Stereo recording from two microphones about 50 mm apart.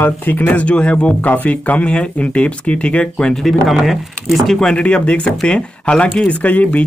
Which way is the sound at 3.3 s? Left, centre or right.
Centre.